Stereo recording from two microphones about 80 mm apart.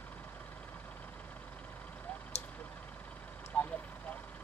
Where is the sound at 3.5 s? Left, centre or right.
Centre.